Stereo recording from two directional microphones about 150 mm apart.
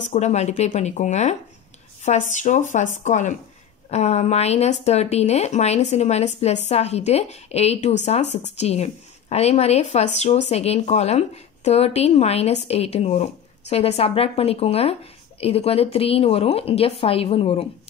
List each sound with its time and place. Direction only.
0.1 s speech: 50° left (ahead or behind)